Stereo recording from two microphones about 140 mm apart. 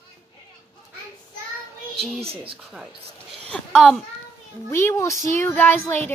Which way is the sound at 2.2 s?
40° right (ahead or behind).